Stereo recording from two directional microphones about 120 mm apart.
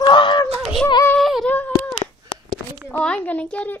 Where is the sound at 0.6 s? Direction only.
Centre (ahead or behind).